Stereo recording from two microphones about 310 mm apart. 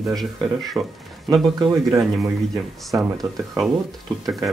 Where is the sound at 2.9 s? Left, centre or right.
Centre.